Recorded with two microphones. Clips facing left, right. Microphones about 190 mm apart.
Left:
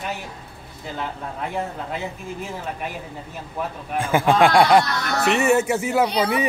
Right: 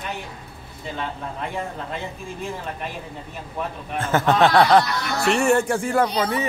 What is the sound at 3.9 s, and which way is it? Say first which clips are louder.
Speech: left 1 dB; 10° left (ahead or behind).